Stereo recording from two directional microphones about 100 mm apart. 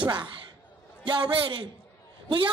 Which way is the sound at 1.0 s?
50° right (ahead or behind).